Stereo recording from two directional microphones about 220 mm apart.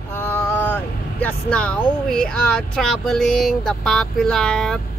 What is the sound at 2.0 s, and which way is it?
Speech, 5° left (ahead or behind).